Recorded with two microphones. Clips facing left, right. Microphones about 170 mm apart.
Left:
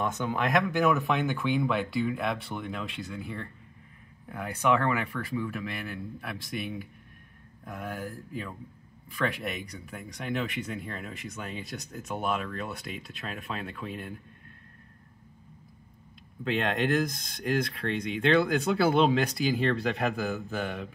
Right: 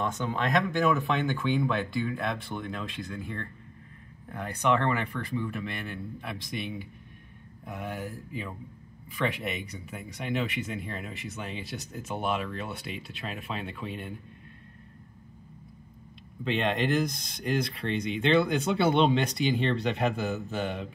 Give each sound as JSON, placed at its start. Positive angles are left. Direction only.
{"t": 0.0, "sound": "speech", "side_deg": 15}
{"t": 0.5, "sound": "speech", "side_deg": 0}
{"t": 16.4, "sound": "speech", "side_deg": 0}